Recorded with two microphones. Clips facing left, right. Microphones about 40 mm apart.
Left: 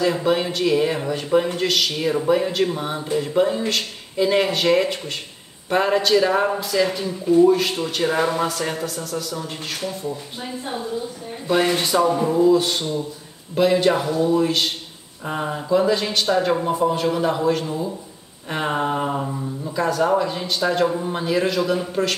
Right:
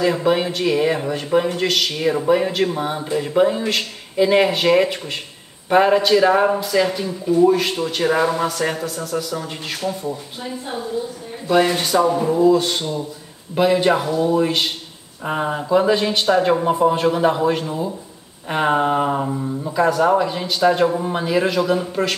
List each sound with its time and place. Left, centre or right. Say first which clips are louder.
0.0 s speech: right 2 dB; centre
11.5 s speech: right 2 dB; centre
13.6 s speech: right 1 dB; centre